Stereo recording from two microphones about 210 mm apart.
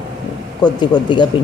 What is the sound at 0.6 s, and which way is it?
Speech, 20° left (ahead or behind).